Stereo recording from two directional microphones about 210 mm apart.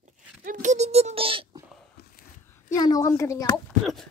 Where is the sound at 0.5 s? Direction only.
35° right (ahead or behind).